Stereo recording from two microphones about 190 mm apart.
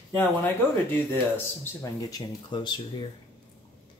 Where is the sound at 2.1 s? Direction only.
25° left (ahead or behind).